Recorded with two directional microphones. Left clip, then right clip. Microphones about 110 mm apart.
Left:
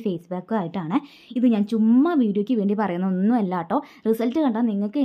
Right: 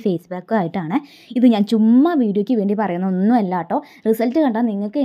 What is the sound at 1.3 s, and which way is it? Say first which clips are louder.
Speech: right 6 dB; 55° right (ahead or behind).